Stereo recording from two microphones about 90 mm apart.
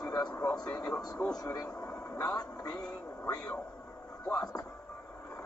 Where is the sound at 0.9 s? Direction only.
5° left (ahead or behind).